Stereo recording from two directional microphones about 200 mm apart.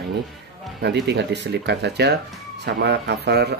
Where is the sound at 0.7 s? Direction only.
55° right (ahead or behind).